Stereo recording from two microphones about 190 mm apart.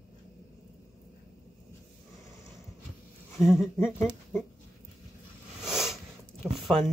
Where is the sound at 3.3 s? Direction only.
Centre (ahead or behind).